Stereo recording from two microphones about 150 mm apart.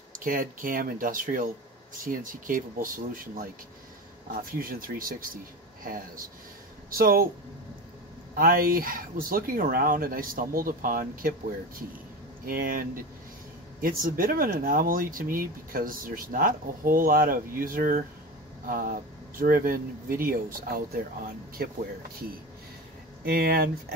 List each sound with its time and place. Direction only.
0.1 s speech: 65° right (ahead or behind)
4.3 s speech: 70° right (ahead or behind)
6.9 s speech: 75° right (ahead or behind)
8.4 s speech: 70° right (ahead or behind)
12.4 s speech: 70° right (ahead or behind)
21.6 s speech: 90° right
23.2 s speech: 90° right